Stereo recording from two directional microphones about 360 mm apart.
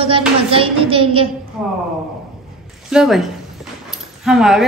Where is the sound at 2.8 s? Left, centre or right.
Centre.